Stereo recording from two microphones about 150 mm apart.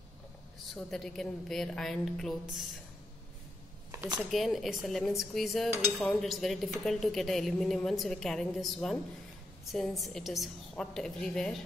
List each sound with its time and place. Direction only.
0.7 s dishes: 5° left (ahead or behind)
3.9 s a sound: 15° right (ahead or behind)
4.2 s dishes: centre (ahead or behind)